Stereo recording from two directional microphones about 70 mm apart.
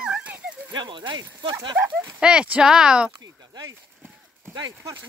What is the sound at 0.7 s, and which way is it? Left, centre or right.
Speech, right.